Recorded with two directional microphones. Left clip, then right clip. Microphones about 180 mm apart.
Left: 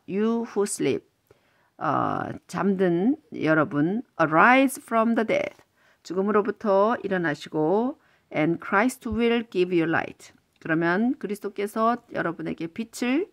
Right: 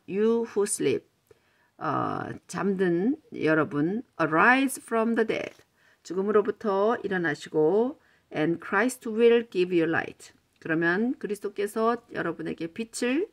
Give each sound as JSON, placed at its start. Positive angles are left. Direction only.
{"t": 0.0, "sound": "speech", "side_deg": 25}